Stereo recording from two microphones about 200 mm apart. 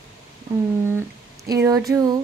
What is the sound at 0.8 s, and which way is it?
Speech, 15° right (ahead or behind).